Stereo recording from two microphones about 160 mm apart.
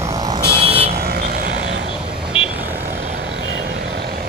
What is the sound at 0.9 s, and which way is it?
Vehicle, 75° right (ahead or behind).